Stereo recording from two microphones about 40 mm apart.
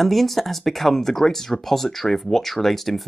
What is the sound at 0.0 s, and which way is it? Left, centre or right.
Speech, centre.